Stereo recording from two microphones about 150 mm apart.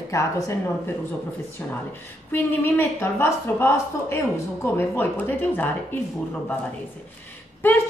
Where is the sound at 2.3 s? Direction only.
15° left (ahead or behind).